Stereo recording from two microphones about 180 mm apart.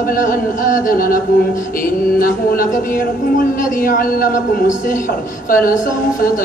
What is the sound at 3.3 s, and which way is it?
A man's voice, 50° left (ahead or behind).